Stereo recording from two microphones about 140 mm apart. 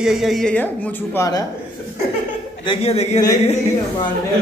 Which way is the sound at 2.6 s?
40° left (ahead or behind).